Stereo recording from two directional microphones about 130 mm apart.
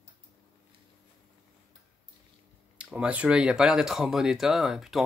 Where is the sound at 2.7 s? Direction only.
10° right (ahead or behind).